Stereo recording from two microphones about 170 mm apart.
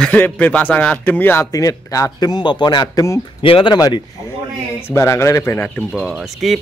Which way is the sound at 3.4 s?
30° left (ahead or behind).